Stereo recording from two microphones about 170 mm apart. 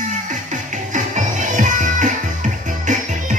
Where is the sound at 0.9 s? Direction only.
45° right (ahead or behind).